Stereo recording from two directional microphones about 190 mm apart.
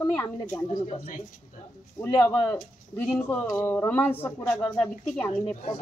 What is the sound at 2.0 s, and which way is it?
Speech, 10° left (ahead or behind).